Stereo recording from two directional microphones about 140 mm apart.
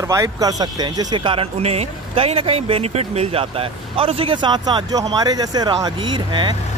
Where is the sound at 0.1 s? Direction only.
25° right (ahead or behind).